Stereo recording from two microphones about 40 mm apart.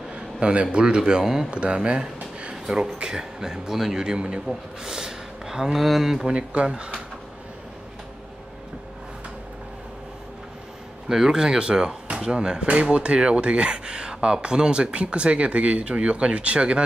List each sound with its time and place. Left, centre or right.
0.1 s a man's voice: right
1.2 s speech: centre
1.5 s speech: right
4.8 s a sound: centre
5.9 s speech: centre
6.2 s speech: right
11.1 s speech: centre; by 16.8 s right